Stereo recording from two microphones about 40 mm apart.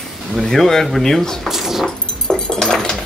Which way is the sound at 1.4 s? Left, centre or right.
Centre.